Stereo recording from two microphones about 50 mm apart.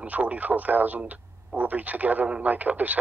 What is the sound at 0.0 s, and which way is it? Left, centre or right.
Speech, right.